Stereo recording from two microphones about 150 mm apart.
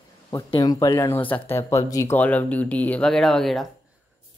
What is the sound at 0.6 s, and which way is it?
Speech, 20° left (ahead or behind).